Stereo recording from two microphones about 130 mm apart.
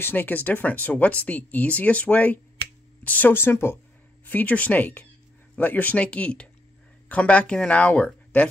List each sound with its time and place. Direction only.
0.0 s speech: 15° left (ahead or behind)